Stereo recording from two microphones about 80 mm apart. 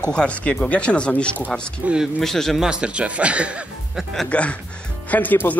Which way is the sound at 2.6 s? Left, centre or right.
Centre.